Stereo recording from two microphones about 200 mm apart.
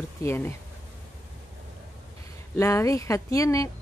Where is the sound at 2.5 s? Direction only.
15° left (ahead or behind).